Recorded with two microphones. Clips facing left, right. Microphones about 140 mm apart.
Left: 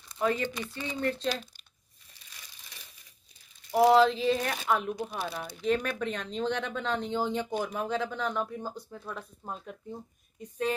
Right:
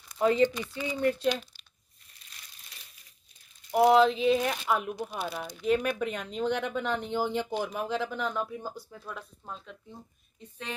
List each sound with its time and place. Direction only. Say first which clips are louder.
0.2 s speech: right 5 dB; 20° right (ahead or behind)
0.7 s speech: right 4 dB; 10° right (ahead or behind)
3.7 s speech: even; centre (ahead or behind)